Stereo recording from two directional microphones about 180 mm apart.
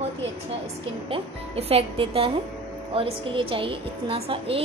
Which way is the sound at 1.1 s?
35° right (ahead or behind).